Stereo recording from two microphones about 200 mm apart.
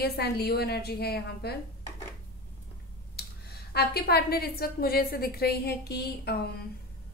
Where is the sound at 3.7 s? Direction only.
50° left (ahead or behind).